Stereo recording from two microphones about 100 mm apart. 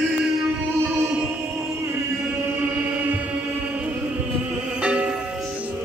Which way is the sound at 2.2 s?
15° right (ahead or behind).